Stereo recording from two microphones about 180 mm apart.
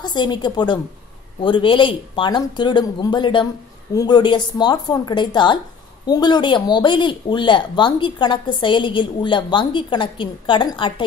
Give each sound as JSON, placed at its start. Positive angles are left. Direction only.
{"t": 0.0, "sound": "speech", "side_deg": 25}